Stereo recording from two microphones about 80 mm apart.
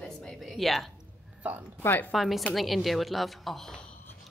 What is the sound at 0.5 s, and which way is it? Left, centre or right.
Speech, centre.